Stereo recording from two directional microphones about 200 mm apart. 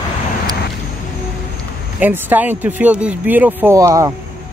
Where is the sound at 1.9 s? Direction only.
10° right (ahead or behind).